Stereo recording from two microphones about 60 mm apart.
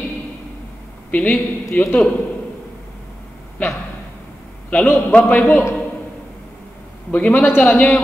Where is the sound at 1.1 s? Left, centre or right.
Left.